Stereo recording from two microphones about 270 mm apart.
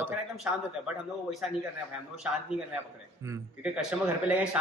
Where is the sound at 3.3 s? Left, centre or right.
Centre.